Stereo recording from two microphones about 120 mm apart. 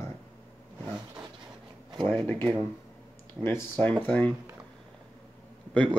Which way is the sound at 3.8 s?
10° left (ahead or behind).